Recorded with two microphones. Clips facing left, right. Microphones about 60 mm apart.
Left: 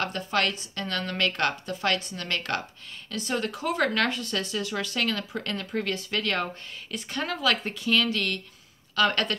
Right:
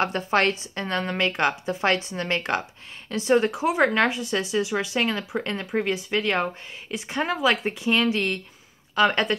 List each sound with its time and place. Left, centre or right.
0.0 s a woman's voice: right